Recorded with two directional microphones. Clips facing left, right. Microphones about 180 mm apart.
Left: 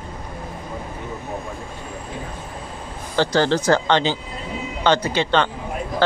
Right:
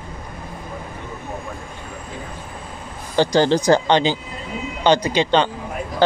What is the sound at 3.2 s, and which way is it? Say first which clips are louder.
Speech: right 2 dB; 15° right (ahead or behind).